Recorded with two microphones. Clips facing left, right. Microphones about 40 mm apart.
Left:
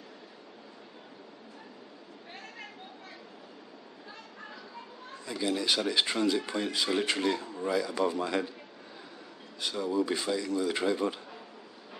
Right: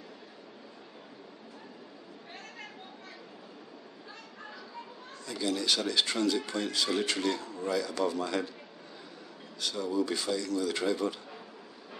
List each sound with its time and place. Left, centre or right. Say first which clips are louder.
2.3 s chatter: left 1 dB; centre
5.1 s speech: left 1 dB; centre
9.6 s speech: left 1 dB; centre